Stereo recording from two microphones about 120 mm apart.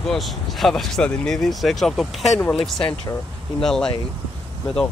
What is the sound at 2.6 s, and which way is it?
Speech, 45° left (ahead or behind).